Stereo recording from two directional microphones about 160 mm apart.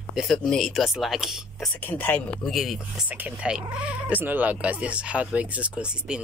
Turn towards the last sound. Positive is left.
turn(degrees=-5)  # may be behind; listen again after turning